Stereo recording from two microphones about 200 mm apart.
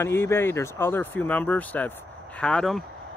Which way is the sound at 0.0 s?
10° left (ahead or behind).